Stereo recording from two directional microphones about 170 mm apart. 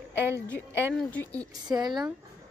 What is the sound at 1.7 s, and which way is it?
Speech, 25° right (ahead or behind).